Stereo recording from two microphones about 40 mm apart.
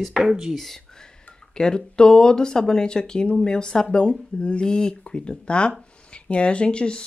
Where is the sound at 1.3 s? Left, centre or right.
Left.